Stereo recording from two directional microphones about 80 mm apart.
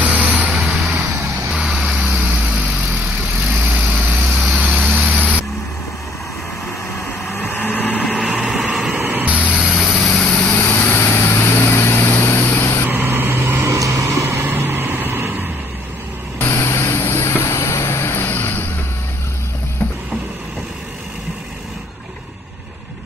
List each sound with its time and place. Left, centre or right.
0.0 s vehicle: centre
0.5 s vehicle: centre
7.2 s vehicle: left
8.4 s vehicle: centre
8.7 s a sound: centre
9.0 s a sound: right
9.3 s vehicle: centre
10.6 s vehicle: left
12.9 s vehicle: right
13.7 s vehicle: right
16.4 s vehicle: left